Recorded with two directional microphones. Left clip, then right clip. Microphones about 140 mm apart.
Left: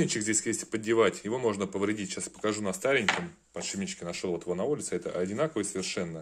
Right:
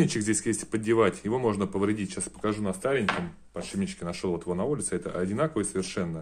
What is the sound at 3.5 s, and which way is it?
Speech, 15° left (ahead or behind).